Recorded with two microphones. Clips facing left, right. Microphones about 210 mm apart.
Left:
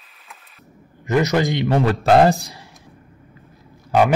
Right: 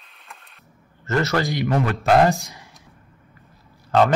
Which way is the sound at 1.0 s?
15° left (ahead or behind).